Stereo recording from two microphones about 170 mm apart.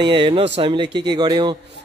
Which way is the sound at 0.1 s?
30° right (ahead or behind).